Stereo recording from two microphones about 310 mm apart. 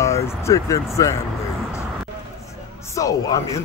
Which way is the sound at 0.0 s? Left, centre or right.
Centre.